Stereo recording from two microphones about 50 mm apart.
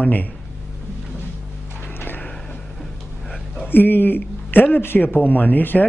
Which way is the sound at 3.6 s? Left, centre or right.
Left.